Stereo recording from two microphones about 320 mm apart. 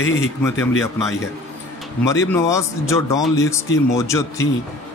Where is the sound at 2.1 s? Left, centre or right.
Centre.